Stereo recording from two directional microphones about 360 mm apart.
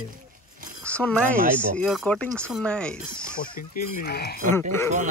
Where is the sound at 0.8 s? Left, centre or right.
Centre.